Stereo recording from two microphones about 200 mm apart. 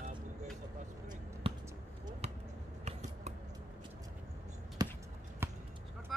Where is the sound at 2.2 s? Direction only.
30° right (ahead or behind).